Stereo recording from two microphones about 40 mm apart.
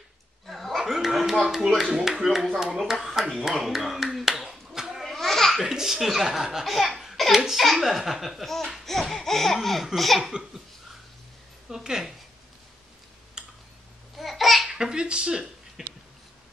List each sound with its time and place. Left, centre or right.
0.5 s a sound: centre
1.7 s speech: centre
3.3 s clapping: centre
5.0 s a sound: centre
5.6 s speech: centre
6.6 s laughter: centre
7.5 s speech: centre
8.8 s laughter: centre
9.9 s speech: centre
11.7 s speech: centre
13.4 s tick-tock: centre
14.1 s babbling: centre
14.7 s speech: centre